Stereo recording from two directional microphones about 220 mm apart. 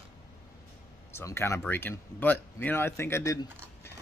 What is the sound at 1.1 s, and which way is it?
Speech, 10° left (ahead or behind).